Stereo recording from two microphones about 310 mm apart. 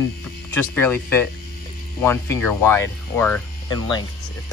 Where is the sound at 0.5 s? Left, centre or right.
Centre.